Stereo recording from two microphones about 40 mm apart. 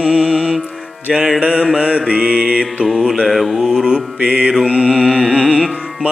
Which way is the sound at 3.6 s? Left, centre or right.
Centre.